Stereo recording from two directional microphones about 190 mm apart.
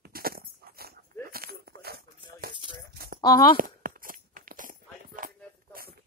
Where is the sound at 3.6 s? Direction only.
50° right (ahead or behind).